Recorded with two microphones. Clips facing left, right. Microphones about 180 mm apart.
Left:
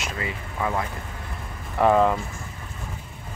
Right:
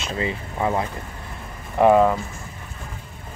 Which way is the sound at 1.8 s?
10° right (ahead or behind).